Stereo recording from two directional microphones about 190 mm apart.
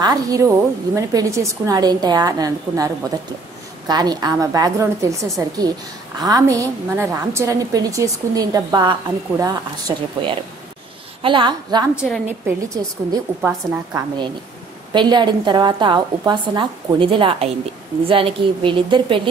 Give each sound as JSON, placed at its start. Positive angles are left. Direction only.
{"t": 0.0, "sound": "a woman's voice", "side_deg": -20}
{"t": 11.9, "sound": "a woman's voice", "side_deg": -5}
{"t": 12.6, "sound": "a woman's voice", "side_deg": -15}